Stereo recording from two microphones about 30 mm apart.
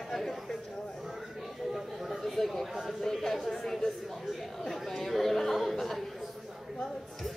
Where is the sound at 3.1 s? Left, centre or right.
Centre.